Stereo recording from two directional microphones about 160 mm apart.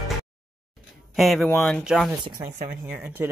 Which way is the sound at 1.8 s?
5° right (ahead or behind).